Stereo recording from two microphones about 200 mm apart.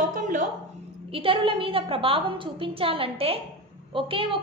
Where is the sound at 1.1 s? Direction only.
25° right (ahead or behind).